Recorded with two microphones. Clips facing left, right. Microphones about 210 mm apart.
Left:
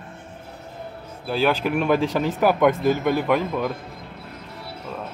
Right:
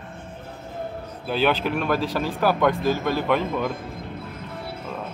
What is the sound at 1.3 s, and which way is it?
Speech, 10° left (ahead or behind).